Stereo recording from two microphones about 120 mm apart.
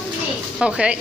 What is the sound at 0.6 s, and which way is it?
Speech, 10° right (ahead or behind).